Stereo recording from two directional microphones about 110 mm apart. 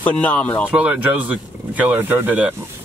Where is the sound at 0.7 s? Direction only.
15° right (ahead or behind).